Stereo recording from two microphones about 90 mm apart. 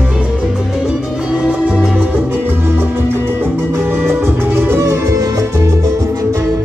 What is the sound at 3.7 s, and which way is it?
Music, 25° right (ahead or behind).